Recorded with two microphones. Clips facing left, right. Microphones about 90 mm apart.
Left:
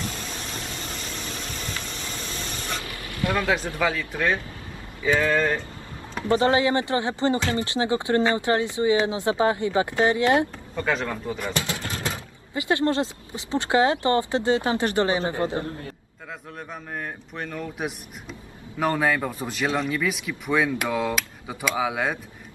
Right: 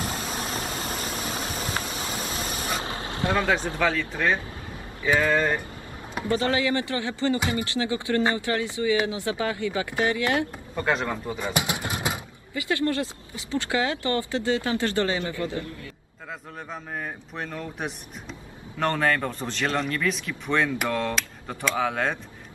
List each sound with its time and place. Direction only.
0.0 s vehicle: 50° right (ahead or behind)
2.8 s vehicle: 25° right (ahead or behind)
3.8 s speech: 5° left (ahead or behind)
5.1 s speech: 10° right (ahead or behind)
6.2 s speech: 20° left (ahead or behind)
10.8 s speech: 5° right (ahead or behind)
11.4 s a sound: 15° right (ahead or behind)
12.5 s speech: 20° left (ahead or behind)
16.9 s speech: centre (ahead or behind)